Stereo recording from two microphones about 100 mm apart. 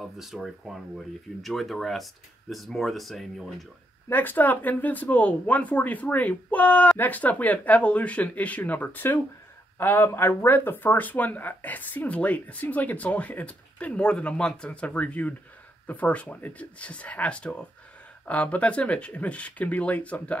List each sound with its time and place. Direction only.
0.0 s speech: centre (ahead or behind)
4.1 s speech: 20° left (ahead or behind)